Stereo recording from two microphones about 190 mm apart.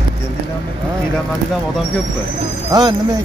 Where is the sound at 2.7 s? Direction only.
20° right (ahead or behind).